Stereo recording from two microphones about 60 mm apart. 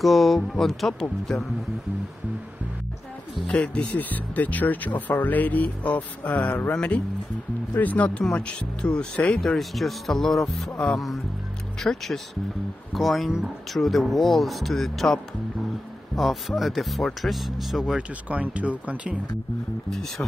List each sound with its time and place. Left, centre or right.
0.0 s speech: centre
3.4 s speech: centre
9.4 s speech: centre
11.8 s speech: centre
16.2 s speech: centre
17.9 s speech: right
19.9 s speech: centre